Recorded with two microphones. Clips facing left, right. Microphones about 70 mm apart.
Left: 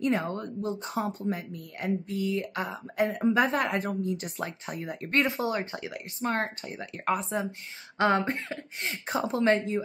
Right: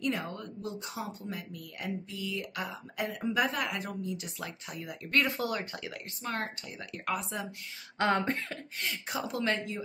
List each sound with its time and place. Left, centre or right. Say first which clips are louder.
0.0 s speech: left 6 dB; left
8.2 s speech: left 2 dB; centre
8.8 s speech: left 5 dB; left